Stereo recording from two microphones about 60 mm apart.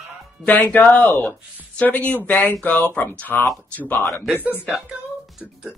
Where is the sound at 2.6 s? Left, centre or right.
Left.